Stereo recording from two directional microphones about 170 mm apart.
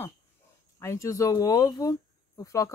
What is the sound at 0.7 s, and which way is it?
Speech, 15° left (ahead or behind).